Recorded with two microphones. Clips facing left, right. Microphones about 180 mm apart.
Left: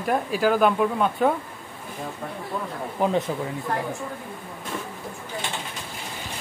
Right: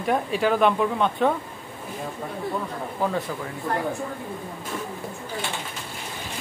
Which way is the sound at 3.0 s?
20° left (ahead or behind).